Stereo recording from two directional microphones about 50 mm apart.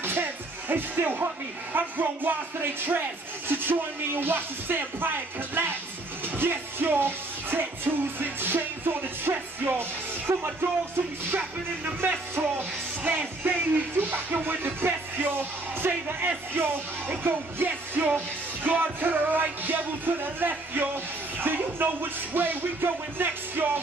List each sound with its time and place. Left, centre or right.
0.0 s speech: right
6.2 s music: right
8.2 s speech: right
11.3 s music: right
13.9 s speech: right
16.5 s music: right
21.4 s speech: right